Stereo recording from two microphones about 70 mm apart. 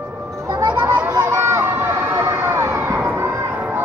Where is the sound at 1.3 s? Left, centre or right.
Right.